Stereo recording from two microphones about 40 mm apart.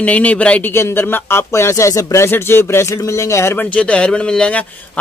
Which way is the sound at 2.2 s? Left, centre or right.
Left.